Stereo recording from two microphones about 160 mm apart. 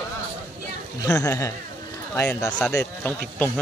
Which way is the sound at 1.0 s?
20° left (ahead or behind).